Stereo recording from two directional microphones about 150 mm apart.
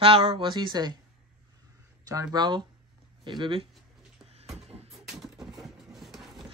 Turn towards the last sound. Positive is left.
turn(degrees=0)  # may be behind; listen again after turning